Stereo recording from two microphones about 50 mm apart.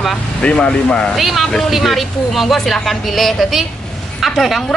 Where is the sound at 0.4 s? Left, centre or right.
Left.